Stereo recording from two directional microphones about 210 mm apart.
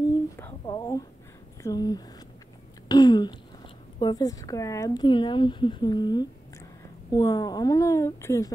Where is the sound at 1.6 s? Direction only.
20° left (ahead or behind).